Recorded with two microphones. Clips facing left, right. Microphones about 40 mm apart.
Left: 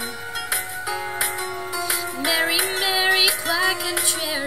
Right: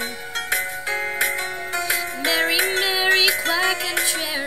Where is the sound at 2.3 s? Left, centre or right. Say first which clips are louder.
Right 2 dB; centre.